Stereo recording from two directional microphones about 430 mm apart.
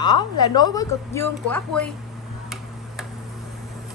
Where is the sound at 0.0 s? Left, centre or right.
Centre.